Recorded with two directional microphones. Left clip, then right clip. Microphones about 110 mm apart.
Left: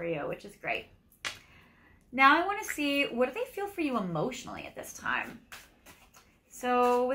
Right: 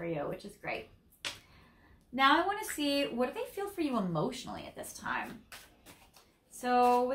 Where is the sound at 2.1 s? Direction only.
15° right (ahead or behind).